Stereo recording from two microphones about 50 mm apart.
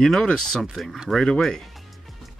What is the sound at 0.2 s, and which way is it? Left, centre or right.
Speech, centre.